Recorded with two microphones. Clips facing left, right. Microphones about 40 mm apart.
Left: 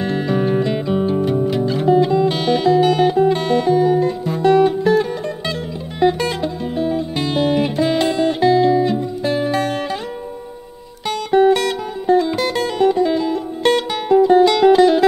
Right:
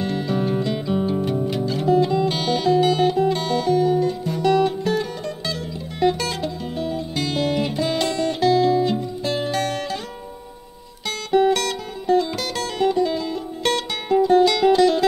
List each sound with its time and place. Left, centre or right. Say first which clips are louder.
0.0 s music: left 4 dB; left
11.5 s music: left 5 dB; left
14.2 s music: left 4 dB; centre